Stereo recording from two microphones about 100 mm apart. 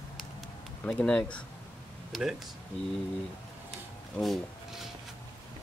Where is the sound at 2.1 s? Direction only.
5° right (ahead or behind).